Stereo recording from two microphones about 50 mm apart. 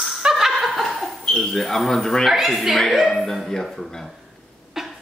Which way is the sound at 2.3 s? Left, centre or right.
Centre.